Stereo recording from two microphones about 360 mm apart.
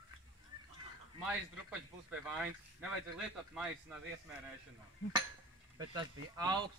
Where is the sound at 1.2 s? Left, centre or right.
Centre.